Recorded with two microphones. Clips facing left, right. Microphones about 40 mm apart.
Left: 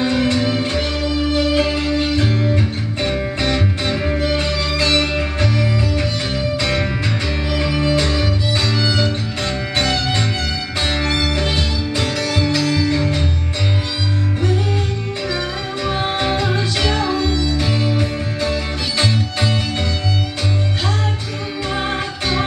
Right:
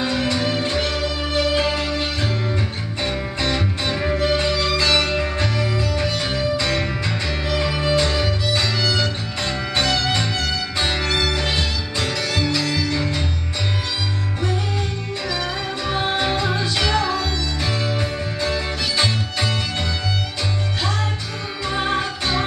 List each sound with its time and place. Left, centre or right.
0.0 s music: centre
2.5 s music: left
4.0 s music: centre
15.2 s music: centre
21.7 s music: centre